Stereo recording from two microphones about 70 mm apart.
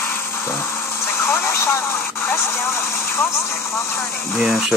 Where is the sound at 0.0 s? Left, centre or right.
Left.